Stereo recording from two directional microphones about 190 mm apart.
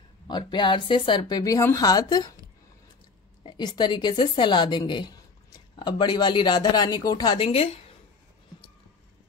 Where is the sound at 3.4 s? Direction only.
25° left (ahead or behind).